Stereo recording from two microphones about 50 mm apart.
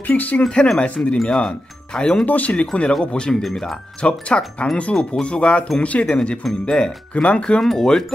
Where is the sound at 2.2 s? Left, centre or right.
Left; by 3.7 s centre.